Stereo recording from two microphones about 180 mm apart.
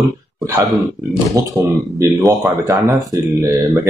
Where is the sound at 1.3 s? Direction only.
15° right (ahead or behind).